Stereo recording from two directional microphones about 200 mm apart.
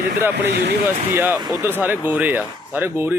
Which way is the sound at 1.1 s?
10° right (ahead or behind).